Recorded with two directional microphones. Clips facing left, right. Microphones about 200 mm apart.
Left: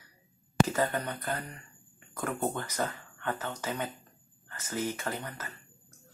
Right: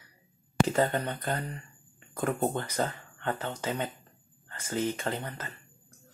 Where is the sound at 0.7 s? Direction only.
30° right (ahead or behind).